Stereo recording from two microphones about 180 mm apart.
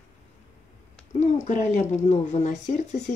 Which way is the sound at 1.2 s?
40° left (ahead or behind).